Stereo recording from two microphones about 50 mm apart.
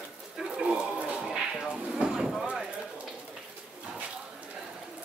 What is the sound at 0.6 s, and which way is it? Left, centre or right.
Speech, right.